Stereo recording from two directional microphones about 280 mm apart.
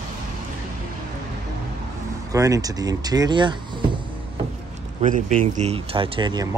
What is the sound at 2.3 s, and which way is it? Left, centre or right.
Speech, centre.